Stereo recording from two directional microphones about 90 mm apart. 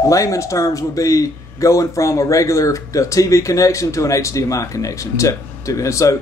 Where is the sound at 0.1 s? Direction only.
35° left (ahead or behind).